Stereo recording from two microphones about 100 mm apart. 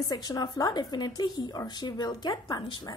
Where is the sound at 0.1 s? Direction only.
40° left (ahead or behind).